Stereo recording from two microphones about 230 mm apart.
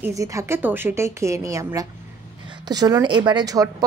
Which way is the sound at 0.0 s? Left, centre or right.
Centre.